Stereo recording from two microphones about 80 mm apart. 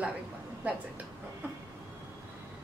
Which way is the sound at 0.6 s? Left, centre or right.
Centre.